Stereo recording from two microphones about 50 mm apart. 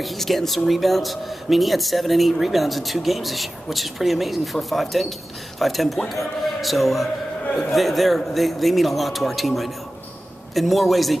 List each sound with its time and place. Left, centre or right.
0.0 s speech: centre